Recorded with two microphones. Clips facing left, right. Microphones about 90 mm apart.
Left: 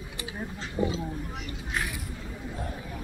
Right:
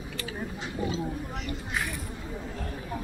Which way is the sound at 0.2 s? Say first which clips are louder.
Even; 20° left (ahead or behind).